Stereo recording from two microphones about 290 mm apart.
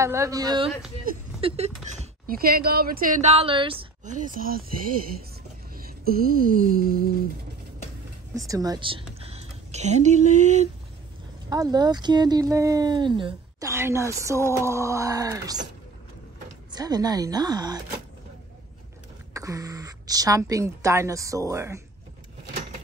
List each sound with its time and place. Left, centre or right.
0.0 s speech: centre; by 4.9 s right
5.8 s a sound: right
8.5 s a woman's voice: centre
11.4 s speech: centre
16.7 s speech: centre
19.3 s speech: centre